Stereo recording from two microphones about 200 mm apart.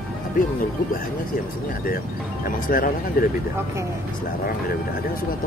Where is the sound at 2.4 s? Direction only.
45° left (ahead or behind).